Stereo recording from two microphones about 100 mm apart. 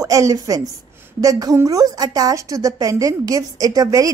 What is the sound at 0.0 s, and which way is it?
A woman's voice, 35° right (ahead or behind).